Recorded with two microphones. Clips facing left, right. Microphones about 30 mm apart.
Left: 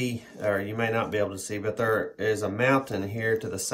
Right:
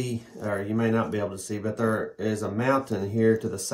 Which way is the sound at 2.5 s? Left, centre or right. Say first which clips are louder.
Right 1 dB; left.